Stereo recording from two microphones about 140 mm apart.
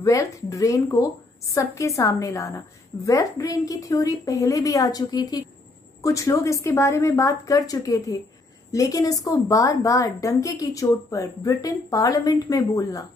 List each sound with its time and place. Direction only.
0.0 s a woman's voice: 25° left (ahead or behind)